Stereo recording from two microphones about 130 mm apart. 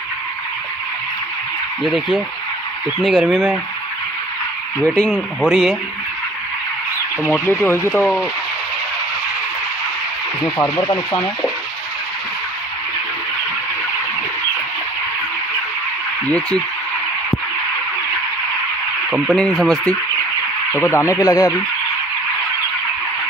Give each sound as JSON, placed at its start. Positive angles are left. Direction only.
{"t": 1.8, "sound": "speech", "side_deg": 0}
{"t": 4.8, "sound": "speech", "side_deg": 5}
{"t": 7.2, "sound": "speech", "side_deg": 15}
{"t": 10.4, "sound": "speech", "side_deg": 30}
{"t": 16.3, "sound": "speech", "side_deg": 10}
{"t": 19.0, "sound": "speech", "side_deg": -10}
{"t": 19.3, "sound": "speech", "side_deg": 5}
{"t": 20.7, "sound": "speech", "side_deg": 20}